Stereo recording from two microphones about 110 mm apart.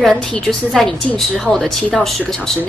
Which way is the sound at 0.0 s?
5° left (ahead or behind).